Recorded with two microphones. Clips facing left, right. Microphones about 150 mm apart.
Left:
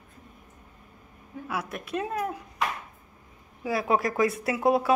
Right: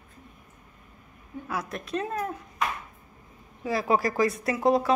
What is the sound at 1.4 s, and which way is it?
Speech, 5° left (ahead or behind).